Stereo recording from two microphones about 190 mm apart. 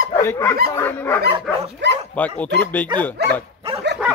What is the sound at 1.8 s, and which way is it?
Speech, 65° right (ahead or behind).